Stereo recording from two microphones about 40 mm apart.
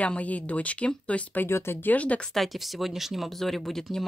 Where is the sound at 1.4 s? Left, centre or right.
Left.